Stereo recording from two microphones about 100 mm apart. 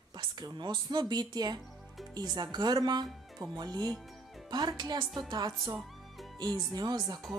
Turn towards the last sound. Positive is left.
turn(degrees=-45)  # may be behind; listen again after turning